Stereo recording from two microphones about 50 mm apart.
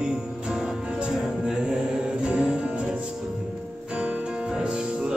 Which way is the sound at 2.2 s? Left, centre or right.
Centre.